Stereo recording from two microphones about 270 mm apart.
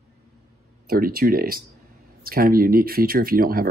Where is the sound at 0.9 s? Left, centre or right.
Right.